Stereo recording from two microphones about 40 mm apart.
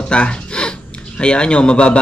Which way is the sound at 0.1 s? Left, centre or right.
Left.